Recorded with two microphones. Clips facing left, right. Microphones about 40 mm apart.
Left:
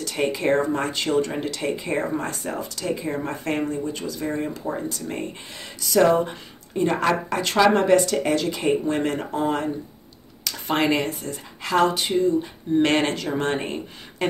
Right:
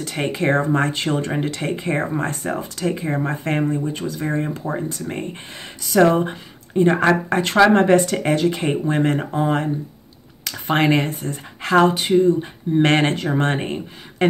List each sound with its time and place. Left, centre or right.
0.0 s speech: right
10.7 s speech: right